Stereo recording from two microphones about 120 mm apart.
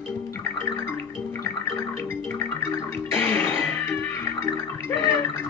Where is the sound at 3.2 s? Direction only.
15° left (ahead or behind).